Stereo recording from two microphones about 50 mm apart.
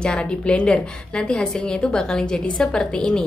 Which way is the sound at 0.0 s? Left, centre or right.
Left.